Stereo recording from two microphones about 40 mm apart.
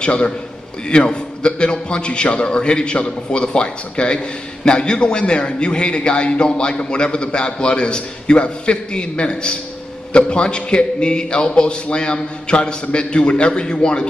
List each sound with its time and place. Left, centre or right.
0.0 s a man's voice: left